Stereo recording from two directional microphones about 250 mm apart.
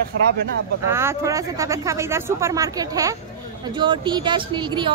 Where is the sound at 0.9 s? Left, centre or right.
Centre.